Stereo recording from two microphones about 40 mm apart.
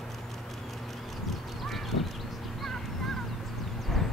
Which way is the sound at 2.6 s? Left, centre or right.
Centre.